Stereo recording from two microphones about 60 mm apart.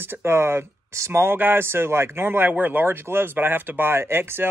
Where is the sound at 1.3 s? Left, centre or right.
Right.